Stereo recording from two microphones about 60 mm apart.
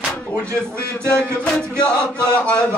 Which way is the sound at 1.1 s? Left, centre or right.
Centre.